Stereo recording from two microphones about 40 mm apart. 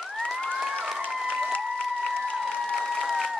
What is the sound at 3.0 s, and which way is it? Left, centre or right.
Applause, centre.